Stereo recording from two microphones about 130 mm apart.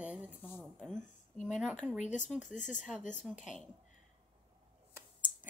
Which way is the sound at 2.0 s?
70° left (ahead or behind).